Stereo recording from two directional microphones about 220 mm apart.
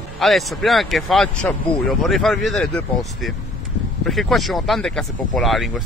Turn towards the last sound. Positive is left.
turn(degrees=0)  # may be behind; listen again after turning